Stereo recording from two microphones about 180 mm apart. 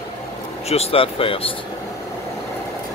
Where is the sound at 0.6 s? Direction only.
35° left (ahead or behind).